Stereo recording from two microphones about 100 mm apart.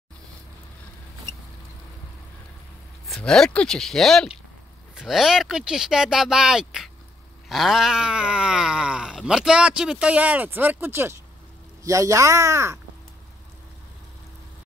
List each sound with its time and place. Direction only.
3.1 s speech: 5° left (ahead or behind); by 12.8 s 30° right (ahead or behind)